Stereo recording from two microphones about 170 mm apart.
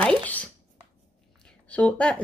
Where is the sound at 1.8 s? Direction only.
5° left (ahead or behind).